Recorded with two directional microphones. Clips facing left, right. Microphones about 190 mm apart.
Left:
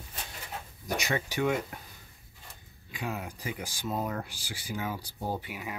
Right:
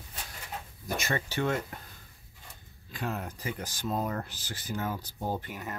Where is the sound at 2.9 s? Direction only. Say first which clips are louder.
Right 1 dB; 10° left (ahead or behind).